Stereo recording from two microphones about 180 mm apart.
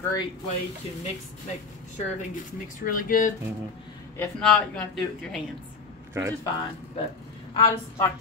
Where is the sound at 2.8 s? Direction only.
50° left (ahead or behind).